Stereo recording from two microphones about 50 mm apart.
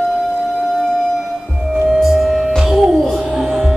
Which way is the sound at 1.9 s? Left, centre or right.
Centre.